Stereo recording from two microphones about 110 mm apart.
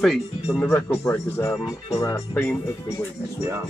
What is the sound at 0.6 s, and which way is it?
Speech, 15° left (ahead or behind).